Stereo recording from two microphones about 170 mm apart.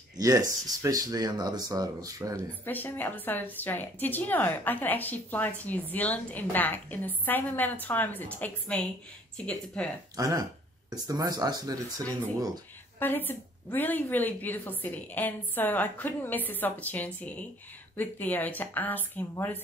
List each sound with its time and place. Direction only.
0.2 s speech: 20° right (ahead or behind)
2.6 s a woman's voice: 10° left (ahead or behind)
10.1 s speech: 20° right (ahead or behind)
13.0 s a woman's voice: 10° left (ahead or behind)